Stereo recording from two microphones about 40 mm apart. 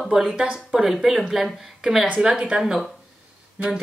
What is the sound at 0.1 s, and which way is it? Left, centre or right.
Speech, centre.